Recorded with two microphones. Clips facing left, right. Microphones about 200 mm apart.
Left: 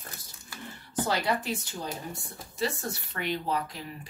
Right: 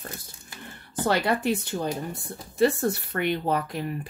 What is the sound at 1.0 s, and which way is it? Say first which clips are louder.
Speech: right 6 dB; 55° right (ahead or behind).